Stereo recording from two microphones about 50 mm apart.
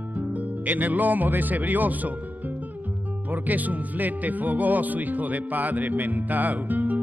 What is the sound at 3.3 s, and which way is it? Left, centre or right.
Speech, right.